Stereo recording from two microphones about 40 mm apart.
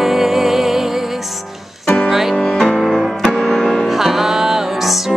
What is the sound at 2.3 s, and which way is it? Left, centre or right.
Music, centre.